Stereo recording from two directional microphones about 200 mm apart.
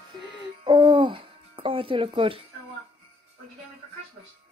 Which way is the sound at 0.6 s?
25° right (ahead or behind).